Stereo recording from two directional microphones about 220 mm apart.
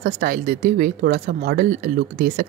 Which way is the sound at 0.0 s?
40° right (ahead or behind).